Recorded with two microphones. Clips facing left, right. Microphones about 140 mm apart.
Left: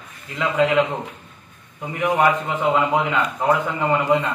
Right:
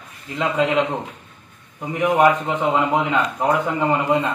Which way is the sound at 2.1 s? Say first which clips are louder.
Right 2 dB; 15° right (ahead or behind).